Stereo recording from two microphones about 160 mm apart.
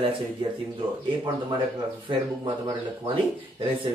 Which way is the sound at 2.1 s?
30° right (ahead or behind).